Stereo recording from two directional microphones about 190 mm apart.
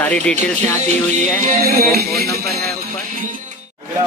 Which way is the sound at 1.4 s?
55° right (ahead or behind).